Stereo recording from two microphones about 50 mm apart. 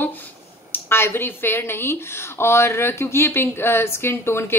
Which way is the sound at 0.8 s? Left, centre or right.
Left.